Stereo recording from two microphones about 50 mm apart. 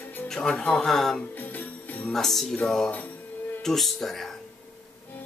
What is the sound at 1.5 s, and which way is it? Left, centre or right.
Jingle bell, left.